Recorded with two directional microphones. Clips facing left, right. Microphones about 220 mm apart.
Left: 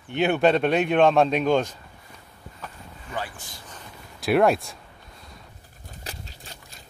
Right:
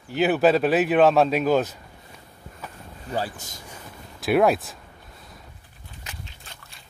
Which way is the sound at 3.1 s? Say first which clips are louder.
Right 5 dB; 40° right (ahead or behind).